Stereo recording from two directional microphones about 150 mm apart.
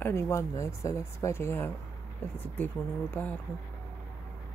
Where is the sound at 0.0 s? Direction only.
20° left (ahead or behind).